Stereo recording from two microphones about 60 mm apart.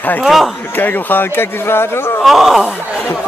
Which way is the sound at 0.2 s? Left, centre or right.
Centre.